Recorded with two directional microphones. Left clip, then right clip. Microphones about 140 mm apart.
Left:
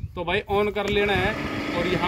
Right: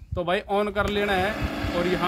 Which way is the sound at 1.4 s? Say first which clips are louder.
Left 1 dB; 5° right (ahead or behind).